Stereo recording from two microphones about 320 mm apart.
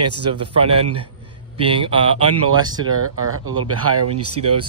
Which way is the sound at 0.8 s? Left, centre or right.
Right.